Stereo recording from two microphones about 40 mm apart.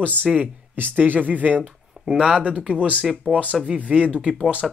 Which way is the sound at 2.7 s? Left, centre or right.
Right.